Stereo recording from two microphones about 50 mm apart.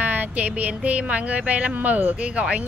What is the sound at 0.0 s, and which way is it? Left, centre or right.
Speech, right.